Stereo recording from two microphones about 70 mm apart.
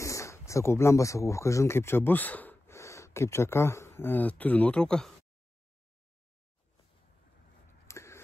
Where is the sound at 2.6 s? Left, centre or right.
Left; by 5.0 s centre.